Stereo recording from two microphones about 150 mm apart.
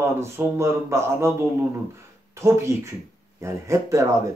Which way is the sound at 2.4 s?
20° right (ahead or behind).